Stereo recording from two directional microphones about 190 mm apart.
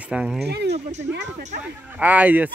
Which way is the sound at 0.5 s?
60° right (ahead or behind).